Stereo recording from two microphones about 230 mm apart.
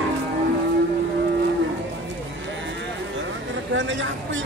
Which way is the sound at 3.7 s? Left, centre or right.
Right.